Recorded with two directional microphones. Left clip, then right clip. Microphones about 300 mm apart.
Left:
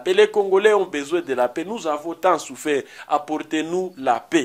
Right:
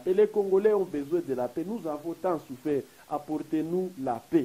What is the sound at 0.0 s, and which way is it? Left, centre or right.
Speech, centre.